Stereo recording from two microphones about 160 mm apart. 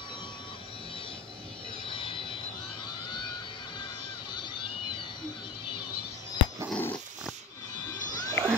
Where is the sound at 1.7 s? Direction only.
35° left (ahead or behind).